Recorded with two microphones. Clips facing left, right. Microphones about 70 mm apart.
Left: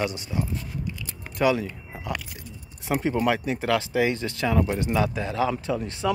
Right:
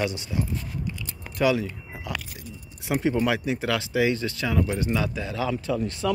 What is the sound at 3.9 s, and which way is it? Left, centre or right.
Speech, centre.